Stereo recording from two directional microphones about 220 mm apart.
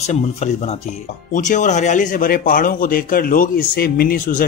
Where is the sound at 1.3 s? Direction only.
35° left (ahead or behind).